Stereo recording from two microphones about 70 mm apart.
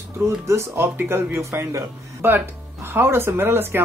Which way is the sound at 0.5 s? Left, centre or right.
Right.